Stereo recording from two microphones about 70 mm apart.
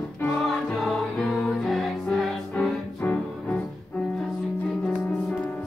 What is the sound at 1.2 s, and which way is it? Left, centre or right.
Music, centre.